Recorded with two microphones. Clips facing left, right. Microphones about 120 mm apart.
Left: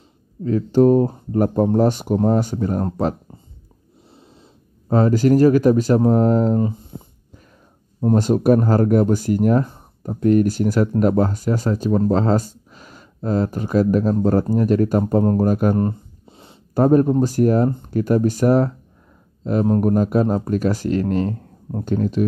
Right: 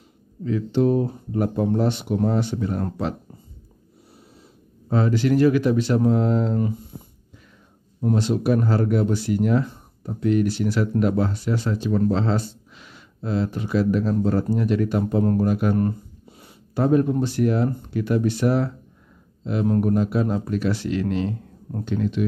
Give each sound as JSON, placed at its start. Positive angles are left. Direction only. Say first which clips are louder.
{"t": 0.4, "sound": "speech", "louder": "left 6 dB", "side_deg": 40}
{"t": 4.8, "sound": "speech", "louder": "left 5 dB", "side_deg": 45}
{"t": 8.1, "sound": "speech", "louder": "left 5 dB", "side_deg": 45}
{"t": 15.8, "sound": "a sound", "louder": "left 2 dB", "side_deg": 25}
{"t": 16.7, "sound": "speech", "louder": "left 5 dB", "side_deg": 45}